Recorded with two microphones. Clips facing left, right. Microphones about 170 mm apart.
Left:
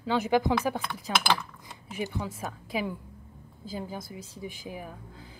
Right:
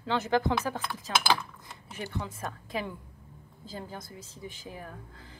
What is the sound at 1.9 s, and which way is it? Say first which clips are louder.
Speech: left 4 dB; 10° left (ahead or behind).